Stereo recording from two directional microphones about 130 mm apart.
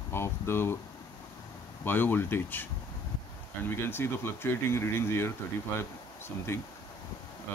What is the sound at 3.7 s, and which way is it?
Speech, 20° left (ahead or behind).